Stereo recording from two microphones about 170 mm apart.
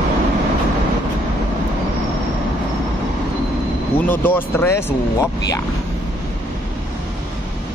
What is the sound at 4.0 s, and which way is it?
Speech, 10° left (ahead or behind).